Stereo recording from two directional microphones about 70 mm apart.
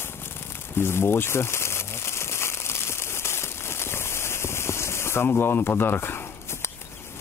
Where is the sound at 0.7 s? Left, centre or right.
Left.